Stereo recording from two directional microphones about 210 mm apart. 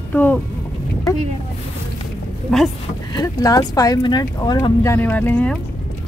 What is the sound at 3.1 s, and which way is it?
Speech, 20° left (ahead or behind).